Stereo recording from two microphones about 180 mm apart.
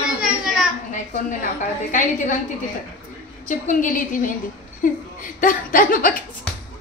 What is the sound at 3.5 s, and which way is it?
Speech, 45° left (ahead or behind).